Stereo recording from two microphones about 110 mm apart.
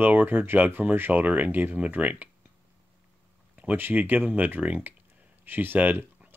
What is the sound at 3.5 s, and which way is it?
Speech, 15° right (ahead or behind).